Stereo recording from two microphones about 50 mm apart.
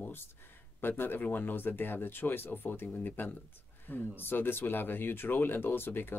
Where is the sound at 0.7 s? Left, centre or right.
Left.